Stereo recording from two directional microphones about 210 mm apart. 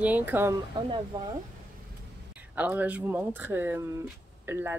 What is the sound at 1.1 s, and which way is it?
Speech, 20° right (ahead or behind).